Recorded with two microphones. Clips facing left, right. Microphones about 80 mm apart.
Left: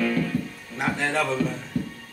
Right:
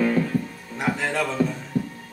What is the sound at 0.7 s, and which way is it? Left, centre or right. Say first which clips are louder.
Music: even; centre.